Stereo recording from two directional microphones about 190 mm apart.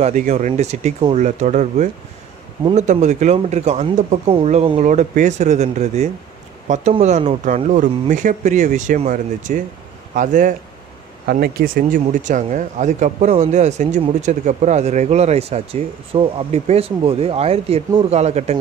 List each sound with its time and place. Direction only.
0.0 s speech: 40° right (ahead or behind)